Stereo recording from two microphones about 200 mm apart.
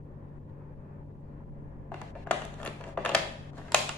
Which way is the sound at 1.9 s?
5° left (ahead or behind).